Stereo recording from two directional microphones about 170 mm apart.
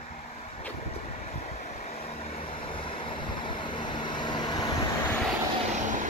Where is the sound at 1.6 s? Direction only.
40° left (ahead or behind).